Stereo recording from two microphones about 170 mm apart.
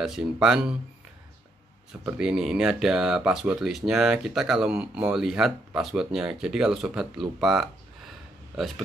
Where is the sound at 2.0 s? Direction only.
5° right (ahead or behind).